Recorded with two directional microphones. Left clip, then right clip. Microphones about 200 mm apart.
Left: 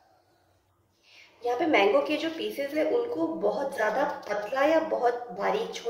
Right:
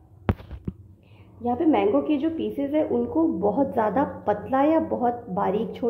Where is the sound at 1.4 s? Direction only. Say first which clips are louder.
Right 2 dB; 35° right (ahead or behind).